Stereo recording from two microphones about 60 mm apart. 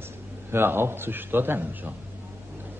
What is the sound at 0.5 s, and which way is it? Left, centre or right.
Speech, right.